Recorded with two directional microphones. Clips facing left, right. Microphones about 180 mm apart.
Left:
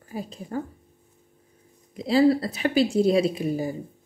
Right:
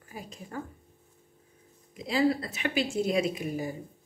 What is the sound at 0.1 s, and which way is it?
Speech, 30° left (ahead or behind).